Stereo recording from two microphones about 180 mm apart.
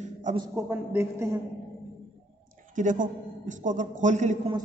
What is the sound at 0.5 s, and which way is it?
Speech, 10° right (ahead or behind).